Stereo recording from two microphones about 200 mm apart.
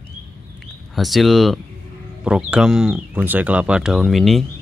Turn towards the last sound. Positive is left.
turn(degrees=0)  # may be behind; listen again after turning